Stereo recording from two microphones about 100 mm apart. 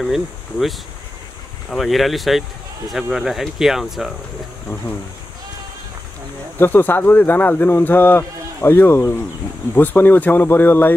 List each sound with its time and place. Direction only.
0.0 s speech: centre (ahead or behind)
6.6 s speech: 20° left (ahead or behind)